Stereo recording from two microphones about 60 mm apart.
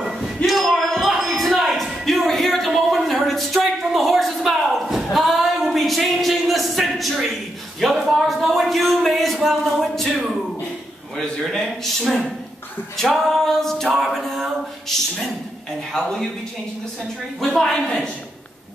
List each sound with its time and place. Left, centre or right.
0.0 s a sound: centre
11.1 s a man's voice: centre
12.9 s music: centre
13.9 s a man's voice: centre
17.4 s music: centre
17.8 s a man's voice: centre